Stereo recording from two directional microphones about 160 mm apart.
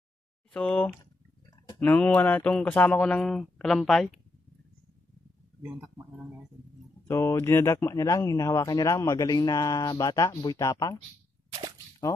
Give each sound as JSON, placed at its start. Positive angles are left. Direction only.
{"t": 0.5, "sound": "speech", "side_deg": 5}
{"t": 7.1, "sound": "speech", "side_deg": 15}